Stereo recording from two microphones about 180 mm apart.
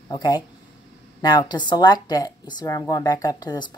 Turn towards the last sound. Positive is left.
turn(degrees=20)  # may be behind; listen again after turning